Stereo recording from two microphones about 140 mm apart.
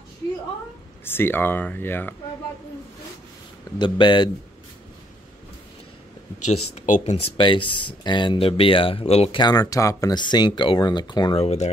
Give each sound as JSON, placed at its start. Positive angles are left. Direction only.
{"t": 1.0, "sound": "speech", "side_deg": 15}
{"t": 3.7, "sound": "speech", "side_deg": 35}
{"t": 6.4, "sound": "speech", "side_deg": 55}
{"t": 7.3, "sound": "speech", "side_deg": 35}
{"t": 9.4, "sound": "speech", "side_deg": 25}
{"t": 11.4, "sound": "speech", "side_deg": 55}